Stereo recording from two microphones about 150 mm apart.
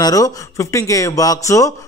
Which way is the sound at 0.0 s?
25° left (ahead or behind).